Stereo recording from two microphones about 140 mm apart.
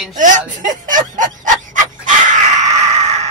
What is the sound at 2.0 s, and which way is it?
Screaming, 60° right (ahead or behind).